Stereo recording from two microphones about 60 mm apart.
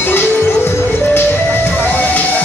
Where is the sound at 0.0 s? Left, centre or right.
Left.